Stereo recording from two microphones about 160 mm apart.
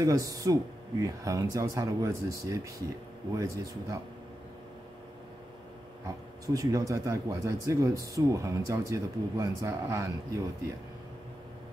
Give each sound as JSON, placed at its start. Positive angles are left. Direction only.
{"t": 0.0, "sound": "speech", "side_deg": -20}
{"t": 6.0, "sound": "speech", "side_deg": -20}